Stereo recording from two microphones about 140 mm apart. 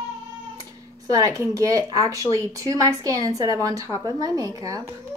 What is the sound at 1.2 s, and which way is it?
Speech, 25° right (ahead or behind).